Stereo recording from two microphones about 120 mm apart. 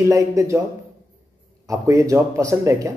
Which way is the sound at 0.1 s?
25° right (ahead or behind).